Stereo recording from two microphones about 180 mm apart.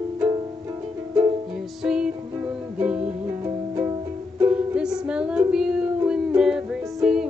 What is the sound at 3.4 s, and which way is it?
Music, 20° right (ahead or behind).